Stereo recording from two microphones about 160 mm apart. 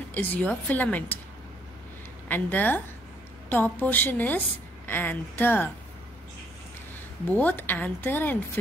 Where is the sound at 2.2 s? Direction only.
10° left (ahead or behind).